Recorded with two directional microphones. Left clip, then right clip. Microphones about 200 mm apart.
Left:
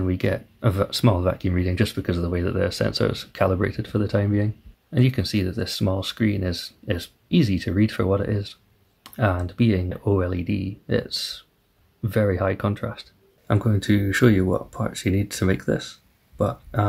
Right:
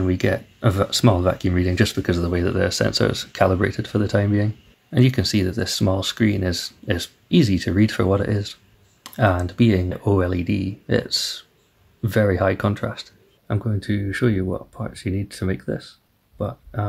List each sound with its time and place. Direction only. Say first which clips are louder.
0.0 s speech: right 3 dB; centre (ahead or behind)